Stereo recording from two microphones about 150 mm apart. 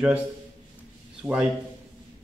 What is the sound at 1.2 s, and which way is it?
Speech, 5° right (ahead or behind).